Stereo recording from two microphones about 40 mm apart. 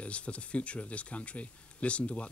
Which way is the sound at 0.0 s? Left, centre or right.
Left.